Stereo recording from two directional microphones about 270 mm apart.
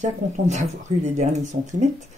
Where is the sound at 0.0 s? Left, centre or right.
Right.